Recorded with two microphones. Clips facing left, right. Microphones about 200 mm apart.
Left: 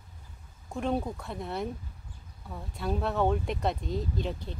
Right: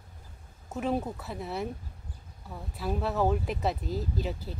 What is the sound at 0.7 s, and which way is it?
Speech, 5° right (ahead or behind).